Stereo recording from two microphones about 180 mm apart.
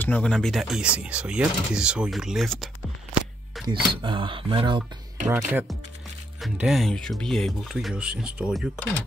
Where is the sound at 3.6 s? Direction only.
25° right (ahead or behind).